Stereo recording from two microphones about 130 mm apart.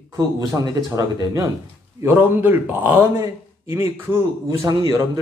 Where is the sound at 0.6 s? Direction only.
30° right (ahead or behind).